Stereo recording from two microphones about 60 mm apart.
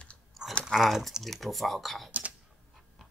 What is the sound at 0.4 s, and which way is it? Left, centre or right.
Chewing, centre.